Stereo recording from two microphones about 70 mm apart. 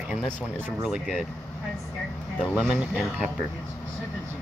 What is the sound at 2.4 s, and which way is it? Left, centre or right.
Speech, centre.